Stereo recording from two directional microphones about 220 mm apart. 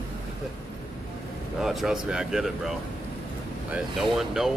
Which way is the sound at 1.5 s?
Centre (ahead or behind).